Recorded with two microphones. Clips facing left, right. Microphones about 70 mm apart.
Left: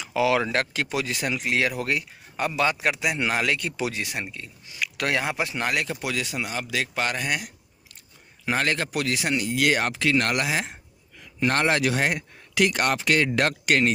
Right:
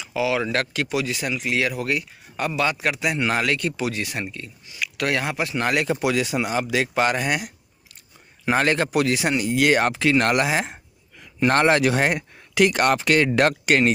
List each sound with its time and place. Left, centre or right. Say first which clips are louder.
0.0 s speech: left 1 dB; left
0.5 s speech: right 2 dB; left; by 3.8 s centre
3.8 s speech: right 2 dB; centre
4.7 s speech: right 2 dB; left
5.6 s a man's voice: right 6 dB; centre
6.0 s speech: right 7 dB; centre
8.9 s speech: right 5 dB; centre; by 12.2 s right
12.7 s speech: right 4 dB; right